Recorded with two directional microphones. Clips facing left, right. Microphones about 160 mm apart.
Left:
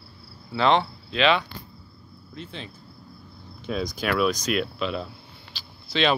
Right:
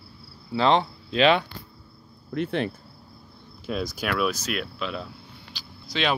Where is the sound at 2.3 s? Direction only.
65° right (ahead or behind).